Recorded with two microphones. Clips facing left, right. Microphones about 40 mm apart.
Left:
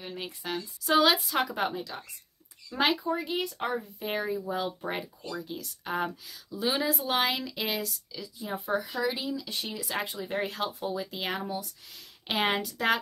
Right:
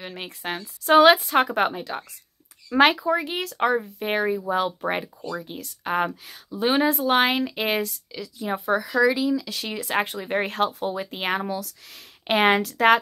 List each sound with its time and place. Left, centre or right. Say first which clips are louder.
0.2 s speech: right 4 dB; right
2.7 s speech: right 9 dB; right
8.2 s speech: right 8 dB; right
9.8 s speech: right 10 dB; right
11.4 s speech: right 5 dB; right
11.9 s speech: right 9 dB; right